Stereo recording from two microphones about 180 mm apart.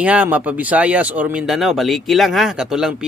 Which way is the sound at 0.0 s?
10° right (ahead or behind).